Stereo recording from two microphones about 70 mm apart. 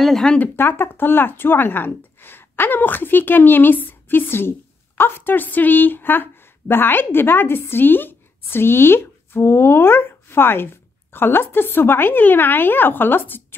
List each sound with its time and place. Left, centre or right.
0.0 s speech: centre
0.6 s a woman's voice: left